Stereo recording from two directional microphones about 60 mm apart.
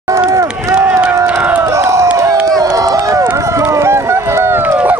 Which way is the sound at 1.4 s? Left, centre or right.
Right.